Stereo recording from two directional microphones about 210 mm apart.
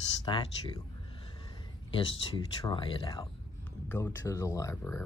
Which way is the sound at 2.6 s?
20° left (ahead or behind).